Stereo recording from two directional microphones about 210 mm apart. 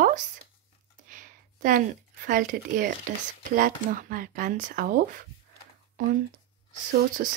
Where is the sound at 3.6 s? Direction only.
40° right (ahead or behind).